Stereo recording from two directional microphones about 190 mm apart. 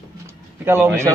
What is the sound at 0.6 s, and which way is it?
Speech, 10° right (ahead or behind).